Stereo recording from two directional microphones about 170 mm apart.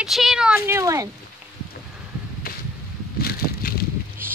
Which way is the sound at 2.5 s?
60° left (ahead or behind).